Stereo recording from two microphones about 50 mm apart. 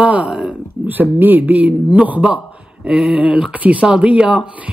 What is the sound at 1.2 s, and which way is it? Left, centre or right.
Speech, right.